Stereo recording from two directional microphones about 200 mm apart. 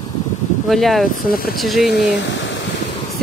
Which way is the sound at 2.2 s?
65° left (ahead or behind).